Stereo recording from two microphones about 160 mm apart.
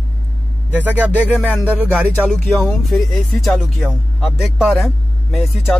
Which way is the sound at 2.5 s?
10° left (ahead or behind).